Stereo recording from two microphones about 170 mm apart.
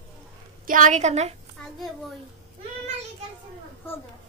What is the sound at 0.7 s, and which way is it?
Speech, 50° right (ahead or behind).